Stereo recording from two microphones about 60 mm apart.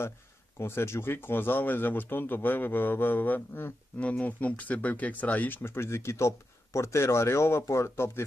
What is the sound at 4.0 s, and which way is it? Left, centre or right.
Speech, left.